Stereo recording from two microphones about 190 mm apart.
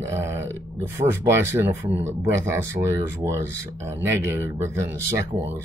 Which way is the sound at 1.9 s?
15° right (ahead or behind).